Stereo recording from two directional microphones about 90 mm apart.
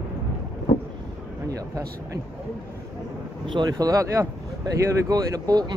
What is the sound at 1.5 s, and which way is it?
Speech, 40° right (ahead or behind).